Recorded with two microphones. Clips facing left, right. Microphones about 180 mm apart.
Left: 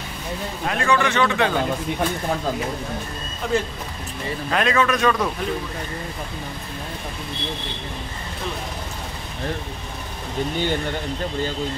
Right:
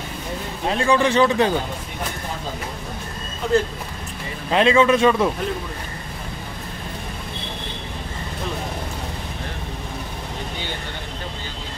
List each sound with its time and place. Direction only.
0.7 s a man's voice: 30° right (ahead or behind)
4.5 s a man's voice: 25° right (ahead or behind)